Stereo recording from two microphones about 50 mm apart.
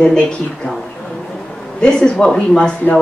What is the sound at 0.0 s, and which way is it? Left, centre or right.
Speech, centre.